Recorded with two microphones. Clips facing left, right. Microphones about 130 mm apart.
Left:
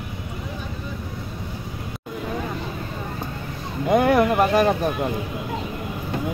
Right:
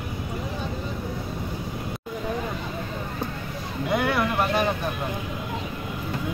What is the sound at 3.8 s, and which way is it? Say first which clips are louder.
Vehicle: left 7 dB; 40° left (ahead or behind).